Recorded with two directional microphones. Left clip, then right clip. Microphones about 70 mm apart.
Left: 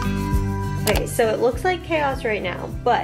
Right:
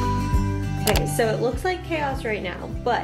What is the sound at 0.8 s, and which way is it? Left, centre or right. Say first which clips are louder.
Music: left 1 dB; centre.